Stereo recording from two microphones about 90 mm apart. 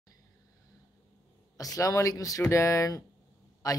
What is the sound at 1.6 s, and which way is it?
Speech, 40° left (ahead or behind).